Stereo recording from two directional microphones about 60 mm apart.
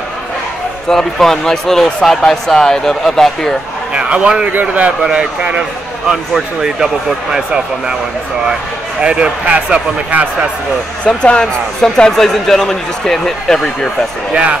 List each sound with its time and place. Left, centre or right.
0.8 s speech: centre
3.9 s a man's voice: centre
5.0 s speech: centre
9.0 s speech: centre
11.1 s speech: centre
14.3 s speech: centre